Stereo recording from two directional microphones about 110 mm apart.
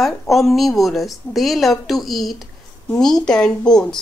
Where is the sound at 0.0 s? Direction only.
Centre (ahead or behind).